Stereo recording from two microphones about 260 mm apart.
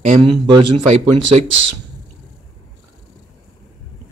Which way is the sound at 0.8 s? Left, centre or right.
Right.